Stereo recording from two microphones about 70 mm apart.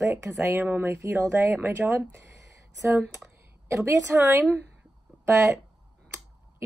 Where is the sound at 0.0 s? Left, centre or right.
Right.